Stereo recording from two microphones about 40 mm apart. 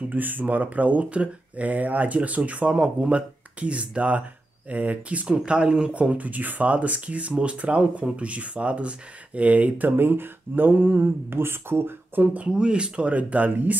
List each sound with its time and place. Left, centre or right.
0.1 s speech: right
2.7 s speech: centre
3.1 s speech: right
5.2 s speech: right
6.1 s speech: right
9.9 s a sound: right
12.4 s speech: right